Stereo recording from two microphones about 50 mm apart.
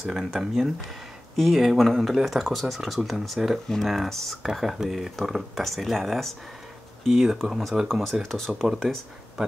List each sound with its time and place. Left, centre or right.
0.0 s speech: centre
3.6 s speech: centre